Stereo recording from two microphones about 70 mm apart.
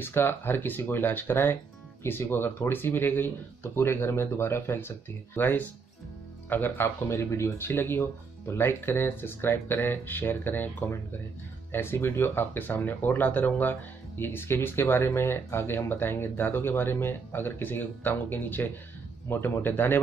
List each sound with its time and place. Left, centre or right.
0.0 s speech: left